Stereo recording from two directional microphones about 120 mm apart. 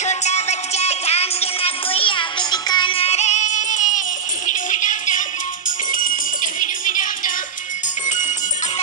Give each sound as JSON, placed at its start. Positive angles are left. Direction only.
{"t": 0.0, "sound": "music", "side_deg": 70}
{"t": 6.4, "sound": "music", "side_deg": 90}